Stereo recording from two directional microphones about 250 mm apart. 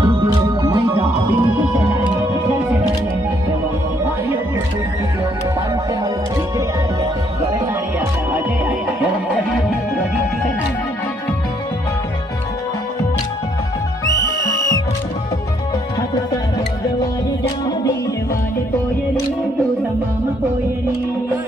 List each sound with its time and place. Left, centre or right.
0.0 s music: centre
8.3 s music: centre